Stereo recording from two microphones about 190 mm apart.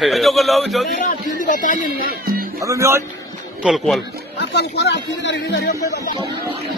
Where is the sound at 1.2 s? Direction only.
45° left (ahead or behind).